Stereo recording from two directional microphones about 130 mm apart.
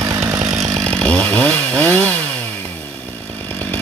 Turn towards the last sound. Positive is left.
turn(degrees=15)  # may be behind; listen again after turning